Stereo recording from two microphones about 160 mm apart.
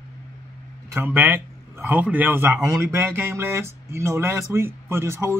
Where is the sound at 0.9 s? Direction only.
10° right (ahead or behind).